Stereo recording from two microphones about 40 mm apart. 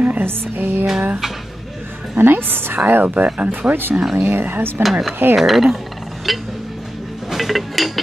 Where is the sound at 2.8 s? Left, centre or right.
Right.